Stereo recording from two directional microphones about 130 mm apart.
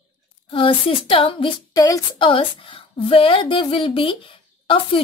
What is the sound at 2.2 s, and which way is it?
A woman's voice, 40° left (ahead or behind).